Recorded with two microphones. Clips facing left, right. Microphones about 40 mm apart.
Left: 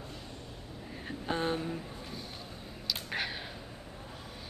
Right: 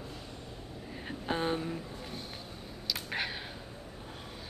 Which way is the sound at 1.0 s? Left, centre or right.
Centre.